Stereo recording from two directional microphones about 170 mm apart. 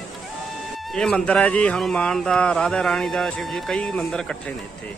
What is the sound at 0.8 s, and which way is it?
A man's voice, 5° left (ahead or behind).